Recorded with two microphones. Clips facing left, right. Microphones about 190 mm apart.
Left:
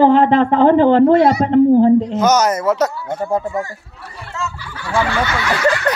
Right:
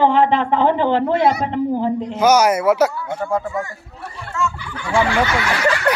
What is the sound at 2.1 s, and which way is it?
A man's voice, 10° right (ahead or behind).